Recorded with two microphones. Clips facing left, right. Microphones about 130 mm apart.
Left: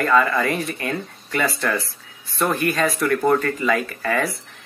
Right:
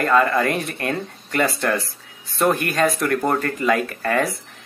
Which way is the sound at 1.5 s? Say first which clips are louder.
Right 2 dB; 40° right (ahead or behind).